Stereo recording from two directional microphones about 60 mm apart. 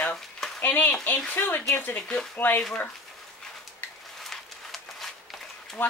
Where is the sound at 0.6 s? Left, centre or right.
Left.